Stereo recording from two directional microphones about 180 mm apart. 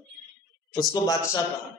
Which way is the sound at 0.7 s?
20° left (ahead or behind).